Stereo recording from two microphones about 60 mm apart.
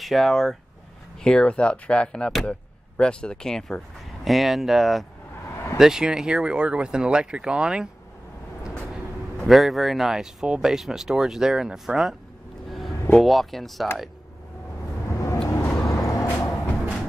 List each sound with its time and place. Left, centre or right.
0.0 s speech: centre
9.5 s speech: centre
12.6 s a sound: centre
13.2 s speech: centre
15.0 s vehicle: left